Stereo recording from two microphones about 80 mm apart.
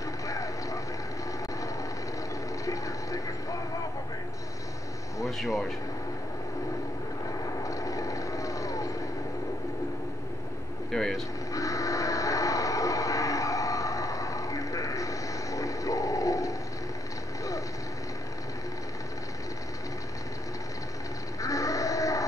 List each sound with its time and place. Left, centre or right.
0.3 s a sound: left
2.6 s vehicle: left
5.4 s speech: centre
7.6 s vehicle: left
10.9 s speech: centre
11.5 s a sound: left
21.4 s music: left